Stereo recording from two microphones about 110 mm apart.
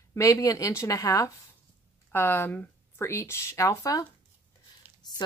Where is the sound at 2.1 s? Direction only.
20° left (ahead or behind).